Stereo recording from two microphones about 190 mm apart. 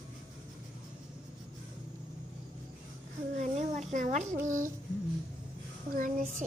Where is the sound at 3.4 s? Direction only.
40° right (ahead or behind).